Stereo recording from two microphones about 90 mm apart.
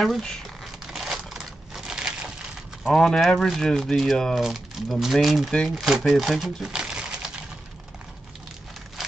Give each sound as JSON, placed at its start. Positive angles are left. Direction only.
{"t": 0.0, "sound": "speech", "side_deg": 5}
{"t": 0.8, "sound": "crumpling", "side_deg": -5}
{"t": 2.9, "sound": "speech", "side_deg": 5}